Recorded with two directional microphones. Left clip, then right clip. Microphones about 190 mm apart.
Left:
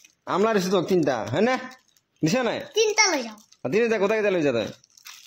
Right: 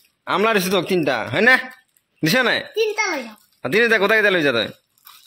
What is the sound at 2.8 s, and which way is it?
Speech, 20° left (ahead or behind).